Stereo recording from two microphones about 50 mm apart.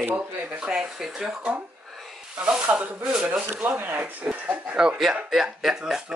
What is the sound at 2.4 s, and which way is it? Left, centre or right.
Speech, centre.